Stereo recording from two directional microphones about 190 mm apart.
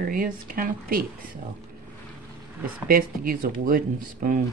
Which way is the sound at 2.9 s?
50° right (ahead or behind).